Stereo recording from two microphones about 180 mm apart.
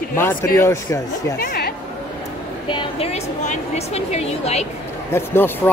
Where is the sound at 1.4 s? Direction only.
50° left (ahead or behind).